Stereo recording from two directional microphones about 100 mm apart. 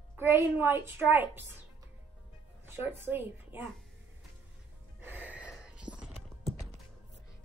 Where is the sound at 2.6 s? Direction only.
20° right (ahead or behind).